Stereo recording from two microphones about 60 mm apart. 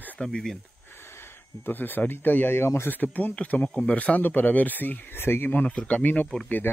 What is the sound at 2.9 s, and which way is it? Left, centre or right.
Speech, left.